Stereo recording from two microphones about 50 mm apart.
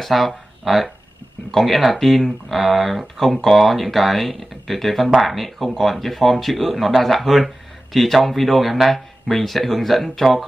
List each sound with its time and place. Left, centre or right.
0.0 s speech: centre